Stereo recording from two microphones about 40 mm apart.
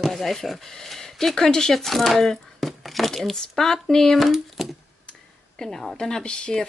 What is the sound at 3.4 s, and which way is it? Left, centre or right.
Speech, centre.